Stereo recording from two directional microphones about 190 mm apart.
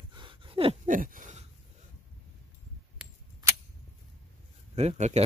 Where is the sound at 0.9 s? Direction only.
45° right (ahead or behind).